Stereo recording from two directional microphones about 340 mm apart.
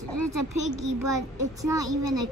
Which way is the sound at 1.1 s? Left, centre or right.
Centre.